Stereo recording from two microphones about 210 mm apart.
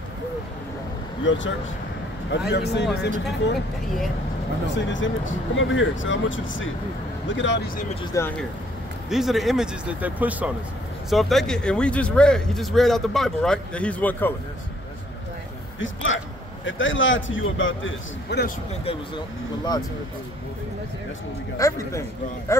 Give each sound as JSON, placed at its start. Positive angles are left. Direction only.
{"t": 1.2, "sound": "speech", "side_deg": 60}
{"t": 4.7, "sound": "speech", "side_deg": 60}
{"t": 7.9, "sound": "speech", "side_deg": 20}
{"t": 9.1, "sound": "speech", "side_deg": 0}
{"t": 15.8, "sound": "a man's voice", "side_deg": 65}
{"t": 18.9, "sound": "speech", "side_deg": 20}
{"t": 21.5, "sound": "speech", "side_deg": 15}